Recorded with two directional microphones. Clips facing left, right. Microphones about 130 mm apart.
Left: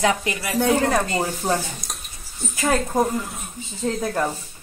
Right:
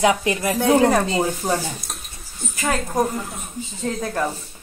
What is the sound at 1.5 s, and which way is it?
A woman's voice, 5° right (ahead or behind).